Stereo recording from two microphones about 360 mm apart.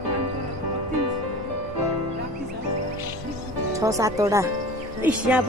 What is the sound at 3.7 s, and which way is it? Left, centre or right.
Speech, centre.